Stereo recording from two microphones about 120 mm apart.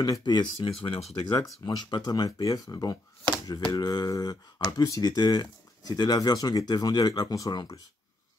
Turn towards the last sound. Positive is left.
turn(degrees=30)  # may be behind; listen again after turning